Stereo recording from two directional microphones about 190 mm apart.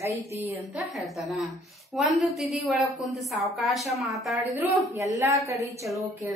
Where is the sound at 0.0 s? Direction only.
15° right (ahead or behind).